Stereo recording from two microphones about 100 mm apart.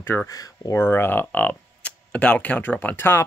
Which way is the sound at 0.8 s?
20° left (ahead or behind).